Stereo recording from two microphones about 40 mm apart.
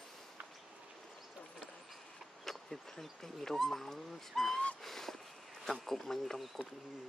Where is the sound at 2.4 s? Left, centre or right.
Centre.